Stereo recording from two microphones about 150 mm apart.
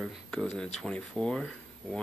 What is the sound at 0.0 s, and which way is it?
Speech, 5° left (ahead or behind).